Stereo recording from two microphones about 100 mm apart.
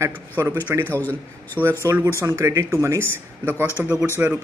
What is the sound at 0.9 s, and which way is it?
Speech, 20° left (ahead or behind).